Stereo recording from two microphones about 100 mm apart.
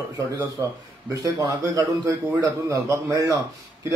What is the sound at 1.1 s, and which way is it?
A man's voice, 35° right (ahead or behind).